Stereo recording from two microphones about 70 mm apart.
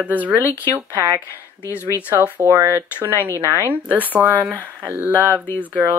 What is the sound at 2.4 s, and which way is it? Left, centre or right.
Speech, right.